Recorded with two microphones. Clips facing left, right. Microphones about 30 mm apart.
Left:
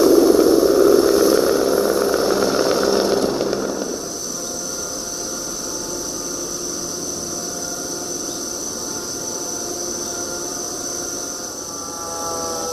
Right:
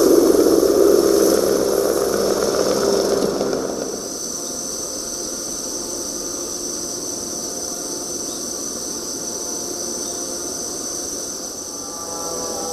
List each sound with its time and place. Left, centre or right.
0.0 s vehicle: centre